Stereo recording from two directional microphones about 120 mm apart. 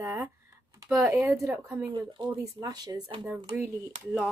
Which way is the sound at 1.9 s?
35° right (ahead or behind).